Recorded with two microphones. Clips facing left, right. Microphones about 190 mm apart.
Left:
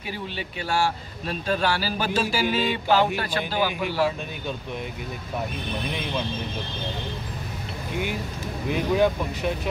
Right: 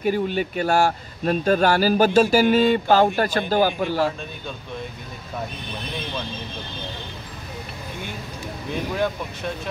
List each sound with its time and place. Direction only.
0.0 s speech: 50° right (ahead or behind)
8.9 s speech: 15° left (ahead or behind)